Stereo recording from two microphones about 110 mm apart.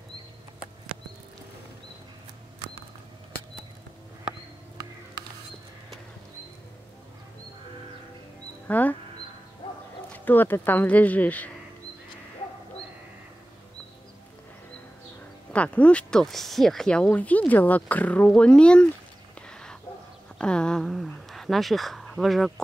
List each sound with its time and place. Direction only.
8.6 s speech: 15° left (ahead or behind)
10.1 s speech: 15° left (ahead or behind)
15.5 s speech: 10° left (ahead or behind)
19.4 s a sound: 5° left (ahead or behind)